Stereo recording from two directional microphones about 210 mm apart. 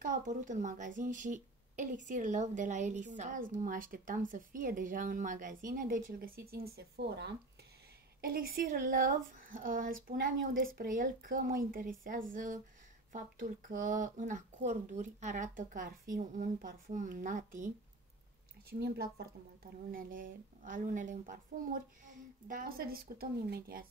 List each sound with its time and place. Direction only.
0.0 s speech: 35° right (ahead or behind); by 7.1 s 50° right (ahead or behind)
8.2 s speech: 45° right (ahead or behind)
18.7 s speech: 50° right (ahead or behind)